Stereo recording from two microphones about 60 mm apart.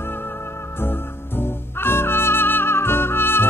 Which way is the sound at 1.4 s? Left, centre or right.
Left.